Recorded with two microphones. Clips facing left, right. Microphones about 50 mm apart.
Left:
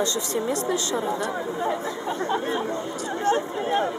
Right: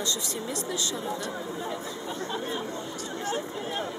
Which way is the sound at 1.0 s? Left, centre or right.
Left.